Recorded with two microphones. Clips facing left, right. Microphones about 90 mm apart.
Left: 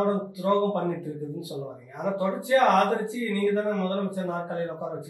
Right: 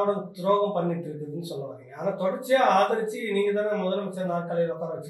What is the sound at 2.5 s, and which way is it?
Speech, 20° right (ahead or behind).